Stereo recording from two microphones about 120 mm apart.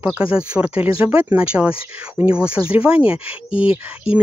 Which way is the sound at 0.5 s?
10° right (ahead or behind).